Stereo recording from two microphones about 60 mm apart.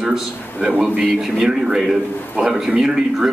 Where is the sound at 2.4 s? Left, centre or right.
Centre.